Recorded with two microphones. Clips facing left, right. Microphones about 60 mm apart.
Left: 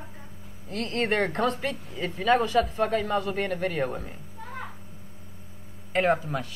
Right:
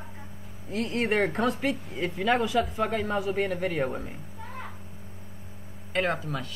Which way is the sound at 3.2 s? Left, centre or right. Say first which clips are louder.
Right 1 dB; left.